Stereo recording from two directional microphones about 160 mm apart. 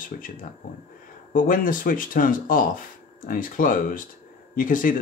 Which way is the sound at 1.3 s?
60° left (ahead or behind).